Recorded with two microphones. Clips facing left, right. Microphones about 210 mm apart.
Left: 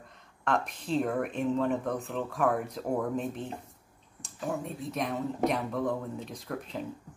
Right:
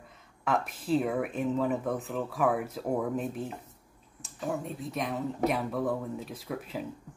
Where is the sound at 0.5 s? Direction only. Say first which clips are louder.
Right 2 dB; 5° right (ahead or behind).